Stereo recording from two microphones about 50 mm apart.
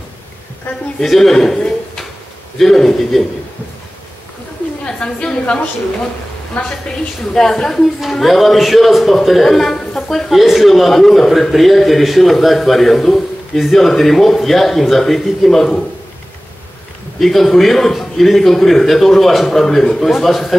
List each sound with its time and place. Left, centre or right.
0.7 s a woman's voice: left
1.0 s a man's voice: centre
2.6 s a man's voice: centre
4.8 s a woman's voice: centre
7.3 s a man's voice: centre
17.2 s a man's voice: centre